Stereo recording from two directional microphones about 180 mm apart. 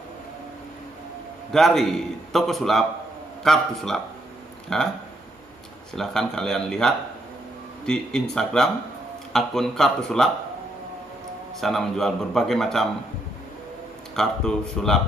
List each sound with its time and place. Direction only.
1.5 s a man's voice: centre (ahead or behind)
5.9 s a man's voice: 5° left (ahead or behind)
11.6 s a man's voice: centre (ahead or behind)
14.1 s a man's voice: 5° left (ahead or behind)